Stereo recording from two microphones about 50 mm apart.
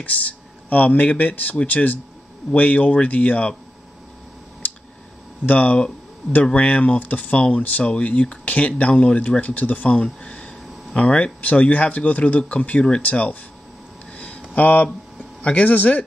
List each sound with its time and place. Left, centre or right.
0.0 s speech: left
5.4 s speech: left
14.1 s a sound: left
14.5 s speech: left